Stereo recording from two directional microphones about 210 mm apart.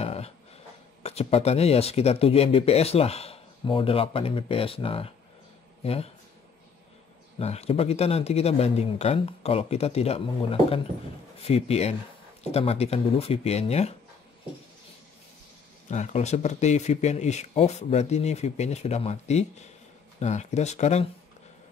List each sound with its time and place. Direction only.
0.0 s a sound: 30° left (ahead or behind)
1.0 s speech: 30° left (ahead or behind)
7.3 s speech: 30° left (ahead or behind)
15.9 s speech: 35° left (ahead or behind)